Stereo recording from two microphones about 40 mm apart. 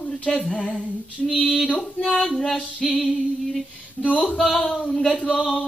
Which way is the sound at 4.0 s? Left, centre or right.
Right.